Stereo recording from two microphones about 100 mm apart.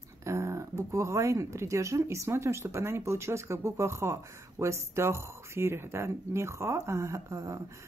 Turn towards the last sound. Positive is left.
turn(degrees=-30)  # may be behind; listen again after turning